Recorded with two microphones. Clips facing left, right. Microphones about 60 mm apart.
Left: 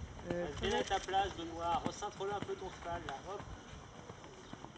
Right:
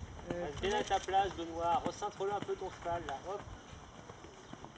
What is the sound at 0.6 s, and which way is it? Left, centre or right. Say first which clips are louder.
Speech: right 4 dB; centre.